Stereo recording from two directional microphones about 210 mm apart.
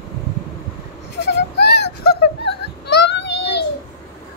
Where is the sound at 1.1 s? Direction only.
55° left (ahead or behind).